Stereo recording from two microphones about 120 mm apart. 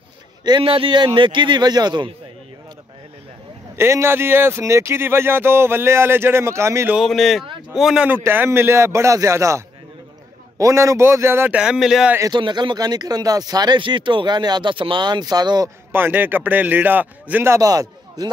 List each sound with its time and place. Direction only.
0.4 s speech: 40° right (ahead or behind)
3.7 s speech: 20° right (ahead or behind)
7.0 s speech: centre (ahead or behind)
8.1 s speech: 15° right (ahead or behind)
10.6 s speech: 25° right (ahead or behind)
11.5 s speech: 5° right (ahead or behind)
12.2 s speech: 40° right (ahead or behind)
15.9 s speech: 15° right (ahead or behind); by 18.3 s 35° right (ahead or behind)